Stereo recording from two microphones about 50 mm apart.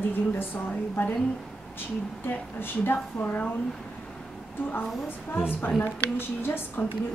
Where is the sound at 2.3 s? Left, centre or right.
Left.